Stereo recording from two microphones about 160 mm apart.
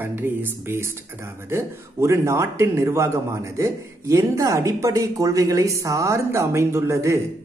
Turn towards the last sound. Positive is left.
turn(degrees=-20)  # may be behind; listen again after turning